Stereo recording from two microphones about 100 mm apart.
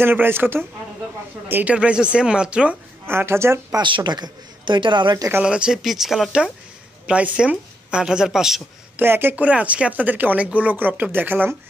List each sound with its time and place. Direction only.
0.0 s speech: 20° right (ahead or behind)
3.1 s speech: 25° right (ahead or behind)
3.7 s a man's voice: 50° right (ahead or behind)
5.4 s speech: 10° right (ahead or behind)
8.9 s speech: 20° right (ahead or behind)